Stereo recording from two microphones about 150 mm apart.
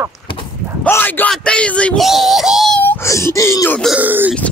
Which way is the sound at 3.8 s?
10° right (ahead or behind).